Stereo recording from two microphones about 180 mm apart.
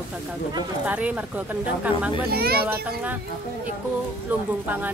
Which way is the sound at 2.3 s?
60° right (ahead or behind).